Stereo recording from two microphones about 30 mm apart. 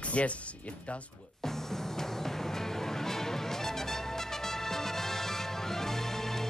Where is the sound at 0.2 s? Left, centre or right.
Left.